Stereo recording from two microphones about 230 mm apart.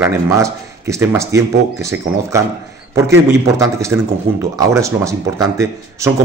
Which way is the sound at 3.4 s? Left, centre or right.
Centre.